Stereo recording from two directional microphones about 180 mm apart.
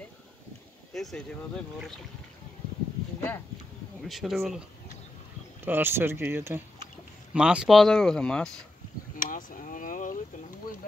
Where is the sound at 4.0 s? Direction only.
Centre (ahead or behind).